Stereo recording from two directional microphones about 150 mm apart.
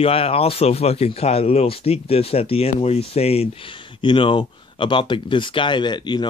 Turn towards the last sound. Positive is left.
turn(degrees=30)  # may be behind; listen again after turning